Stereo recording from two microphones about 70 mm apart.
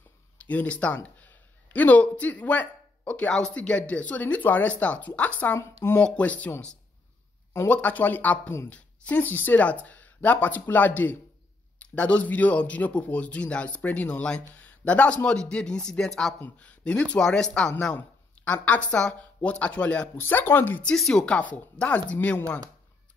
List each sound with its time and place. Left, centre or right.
0.4 s speech: left
7.6 s speech: left; by 16.3 s centre
16.5 s speech: centre
17.9 s speech: left
20.2 s speech: left
20.8 s speech: centre
21.1 s speech: centre